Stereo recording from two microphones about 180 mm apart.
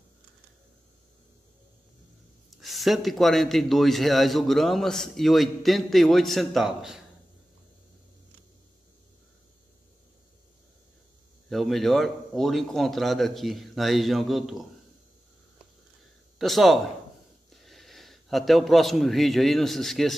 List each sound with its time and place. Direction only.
2.5 s a man's voice: centre (ahead or behind)
11.4 s a man's voice: centre (ahead or behind)
16.3 s a man's voice: centre (ahead or behind)